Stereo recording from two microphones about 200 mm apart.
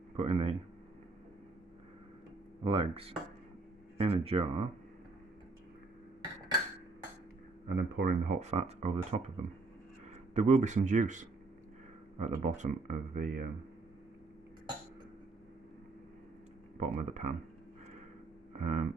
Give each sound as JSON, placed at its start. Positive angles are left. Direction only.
{"t": 0.1, "sound": "speech", "side_deg": -30}
{"t": 2.6, "sound": "speech", "side_deg": -30}
{"t": 7.6, "sound": "speech", "side_deg": -55}
{"t": 16.8, "sound": "speech", "side_deg": -35}
{"t": 18.5, "sound": "a sound", "side_deg": -35}